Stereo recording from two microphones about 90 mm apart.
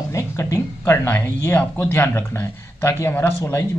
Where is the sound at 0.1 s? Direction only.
35° left (ahead or behind).